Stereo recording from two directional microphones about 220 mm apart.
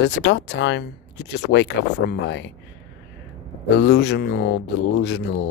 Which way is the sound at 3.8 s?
50° left (ahead or behind).